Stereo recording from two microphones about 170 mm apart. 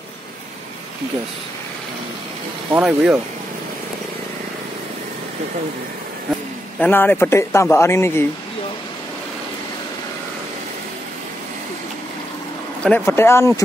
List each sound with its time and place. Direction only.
2.7 s speech: 5° right (ahead or behind)
6.8 s speech: 10° left (ahead or behind)
12.8 s speech: 15° left (ahead or behind)